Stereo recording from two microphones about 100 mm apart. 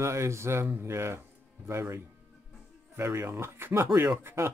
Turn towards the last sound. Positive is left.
turn(degrees=-25)  # may be behind; listen again after turning